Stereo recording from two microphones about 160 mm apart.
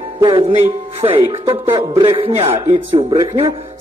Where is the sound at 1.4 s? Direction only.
30° right (ahead or behind).